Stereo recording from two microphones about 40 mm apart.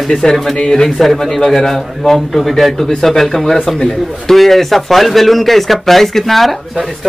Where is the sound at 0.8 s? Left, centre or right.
Centre.